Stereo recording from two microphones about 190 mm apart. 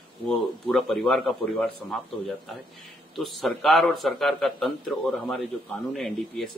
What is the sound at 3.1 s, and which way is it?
Speech, centre (ahead or behind).